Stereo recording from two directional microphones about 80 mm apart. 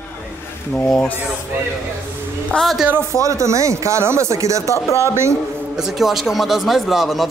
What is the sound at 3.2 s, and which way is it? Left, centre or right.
Speech, right.